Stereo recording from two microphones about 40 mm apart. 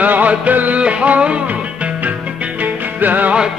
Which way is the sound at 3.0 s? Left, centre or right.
Right.